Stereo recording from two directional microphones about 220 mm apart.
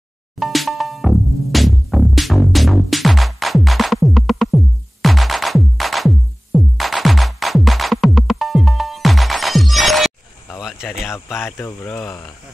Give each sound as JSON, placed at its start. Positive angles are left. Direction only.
{"t": 0.4, "sound": "music", "side_deg": 0}
{"t": 11.4, "sound": "speech", "side_deg": 15}
{"t": 12.0, "sound": "speech", "side_deg": 0}